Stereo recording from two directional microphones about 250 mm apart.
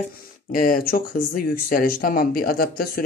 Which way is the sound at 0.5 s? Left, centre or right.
Left.